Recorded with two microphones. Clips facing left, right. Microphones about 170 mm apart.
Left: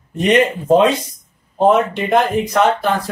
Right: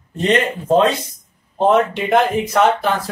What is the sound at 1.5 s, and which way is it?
Speech, centre (ahead or behind).